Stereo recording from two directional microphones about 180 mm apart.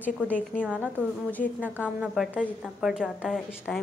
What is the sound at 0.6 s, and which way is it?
Speech, 5° right (ahead or behind).